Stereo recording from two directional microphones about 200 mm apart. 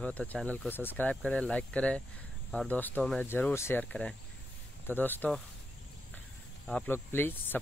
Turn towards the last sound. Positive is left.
turn(degrees=10)  # may be behind; listen again after turning